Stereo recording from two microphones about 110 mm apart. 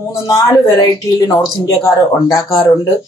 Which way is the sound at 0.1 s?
25° left (ahead or behind).